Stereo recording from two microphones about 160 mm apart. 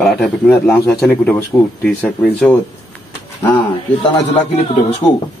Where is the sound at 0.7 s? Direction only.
20° left (ahead or behind).